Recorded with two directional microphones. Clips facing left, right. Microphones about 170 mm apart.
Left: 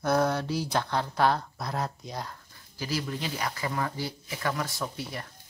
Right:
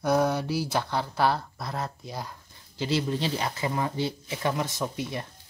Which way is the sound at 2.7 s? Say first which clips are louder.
Right 5 dB; 25° right (ahead or behind).